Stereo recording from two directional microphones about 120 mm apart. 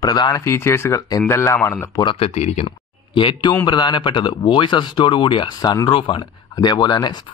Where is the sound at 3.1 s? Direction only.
45° left (ahead or behind).